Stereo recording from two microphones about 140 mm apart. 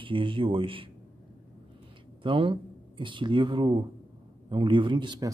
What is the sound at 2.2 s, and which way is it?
Speech, 40° right (ahead or behind).